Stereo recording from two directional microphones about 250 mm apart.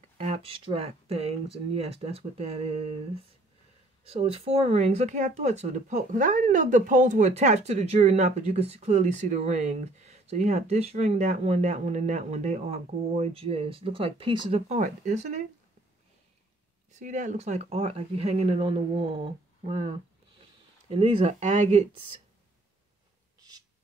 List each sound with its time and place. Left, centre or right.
0.2 s speech: right
4.1 s speech: right
16.9 s speech: right